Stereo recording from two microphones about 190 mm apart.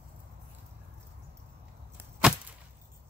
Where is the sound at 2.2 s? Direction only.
5° right (ahead or behind).